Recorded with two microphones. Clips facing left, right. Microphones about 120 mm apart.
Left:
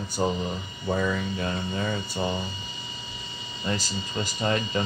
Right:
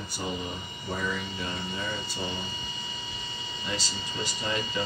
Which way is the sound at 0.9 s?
55° left (ahead or behind).